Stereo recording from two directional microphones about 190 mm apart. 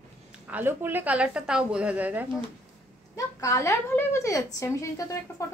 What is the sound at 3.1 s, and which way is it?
A woman's voice, 15° left (ahead or behind).